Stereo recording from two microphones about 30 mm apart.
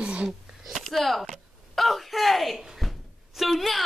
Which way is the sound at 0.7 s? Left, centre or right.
Centre.